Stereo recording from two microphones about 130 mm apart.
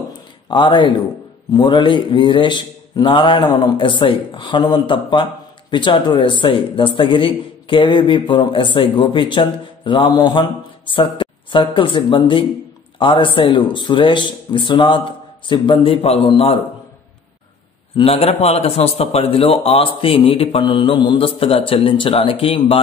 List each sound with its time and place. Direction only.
0.5 s speech: 40° left (ahead or behind)
17.9 s a man's voice: 50° left (ahead or behind)